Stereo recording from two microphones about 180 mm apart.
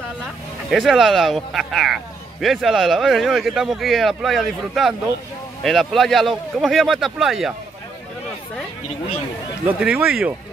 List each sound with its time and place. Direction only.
0.7 s speech: centre (ahead or behind)
9.7 s speech: 5° right (ahead or behind)